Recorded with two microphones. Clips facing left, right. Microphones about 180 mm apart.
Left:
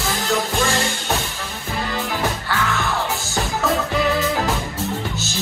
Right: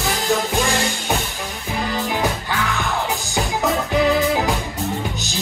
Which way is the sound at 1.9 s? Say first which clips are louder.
Right 2 dB; 15° right (ahead or behind).